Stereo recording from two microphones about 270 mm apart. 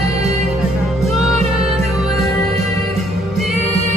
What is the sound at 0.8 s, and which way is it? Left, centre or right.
Music, centre.